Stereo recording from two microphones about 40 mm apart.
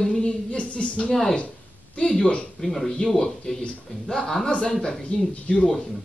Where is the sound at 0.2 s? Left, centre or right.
Left.